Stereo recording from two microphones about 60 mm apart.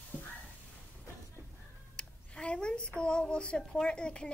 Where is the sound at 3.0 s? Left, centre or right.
Centre.